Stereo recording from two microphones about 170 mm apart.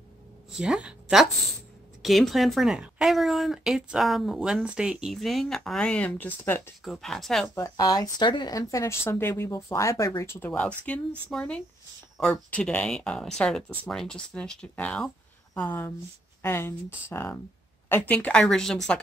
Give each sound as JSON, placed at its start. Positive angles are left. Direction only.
{"t": 0.5, "sound": "speech", "side_deg": -5}
{"t": 6.8, "sound": "speech", "side_deg": 0}
{"t": 7.5, "sound": "speech", "side_deg": 20}